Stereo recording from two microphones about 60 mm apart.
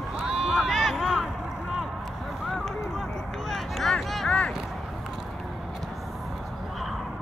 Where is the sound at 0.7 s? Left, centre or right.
Centre.